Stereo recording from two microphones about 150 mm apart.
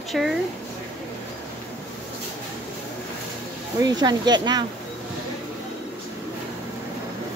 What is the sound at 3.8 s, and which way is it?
Speech, 25° right (ahead or behind).